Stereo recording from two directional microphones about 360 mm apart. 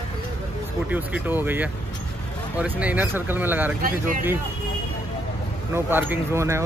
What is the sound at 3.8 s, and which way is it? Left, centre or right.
Speech, right.